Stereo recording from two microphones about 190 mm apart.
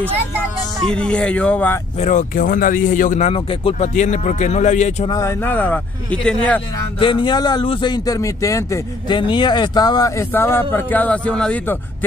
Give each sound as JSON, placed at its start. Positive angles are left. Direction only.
{"t": 0.9, "sound": "speech", "side_deg": 5}
{"t": 2.0, "sound": "speech", "side_deg": 40}
{"t": 5.1, "sound": "speech", "side_deg": 15}
{"t": 7.0, "sound": "speech", "side_deg": 25}